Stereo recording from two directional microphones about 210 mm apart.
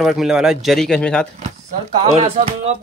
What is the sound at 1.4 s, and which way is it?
Speech, 30° right (ahead or behind).